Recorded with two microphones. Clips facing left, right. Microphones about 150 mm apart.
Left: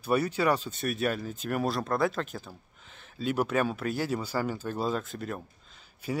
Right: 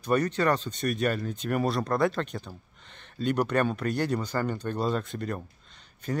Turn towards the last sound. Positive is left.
turn(degrees=10)  # may be behind; listen again after turning